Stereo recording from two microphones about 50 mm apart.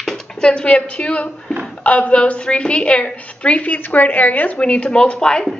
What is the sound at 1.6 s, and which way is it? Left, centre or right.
A woman's voice, left.